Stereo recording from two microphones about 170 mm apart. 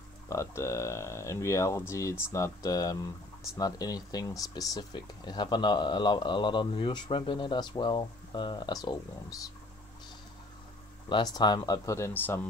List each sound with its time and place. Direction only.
0.3 s speech: 15° left (ahead or behind)
11.3 s speech: 25° left (ahead or behind)